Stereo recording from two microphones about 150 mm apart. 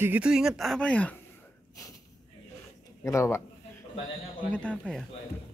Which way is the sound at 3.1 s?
20° left (ahead or behind).